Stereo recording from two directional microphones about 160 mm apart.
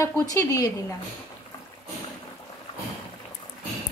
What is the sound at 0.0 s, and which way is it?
Speech, 20° left (ahead or behind).